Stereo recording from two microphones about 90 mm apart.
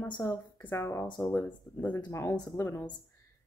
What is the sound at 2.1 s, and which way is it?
Speech, 30° left (ahead or behind).